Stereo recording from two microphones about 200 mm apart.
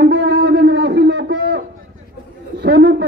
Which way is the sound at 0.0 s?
55° right (ahead or behind).